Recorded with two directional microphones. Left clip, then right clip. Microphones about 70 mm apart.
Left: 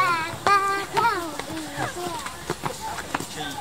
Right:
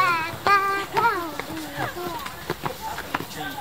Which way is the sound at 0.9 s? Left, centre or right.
Left.